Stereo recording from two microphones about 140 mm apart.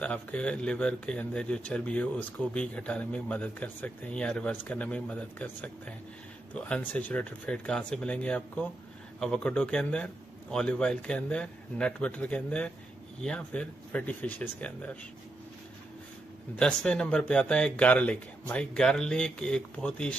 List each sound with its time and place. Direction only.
0.0 s speech: 10° left (ahead or behind)
16.5 s speech: 5° left (ahead or behind)